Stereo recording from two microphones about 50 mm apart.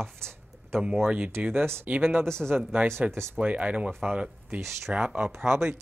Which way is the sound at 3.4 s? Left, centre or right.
Right.